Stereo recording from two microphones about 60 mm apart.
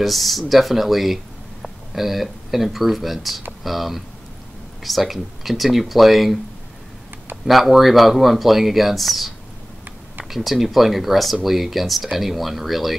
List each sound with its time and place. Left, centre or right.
0.0 s speech: centre
7.4 s speech: centre
10.3 s speech: centre